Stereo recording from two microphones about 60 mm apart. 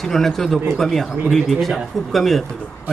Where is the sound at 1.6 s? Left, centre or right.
Centre.